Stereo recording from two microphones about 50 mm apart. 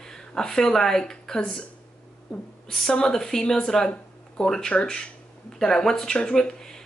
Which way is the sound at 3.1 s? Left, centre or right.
Centre.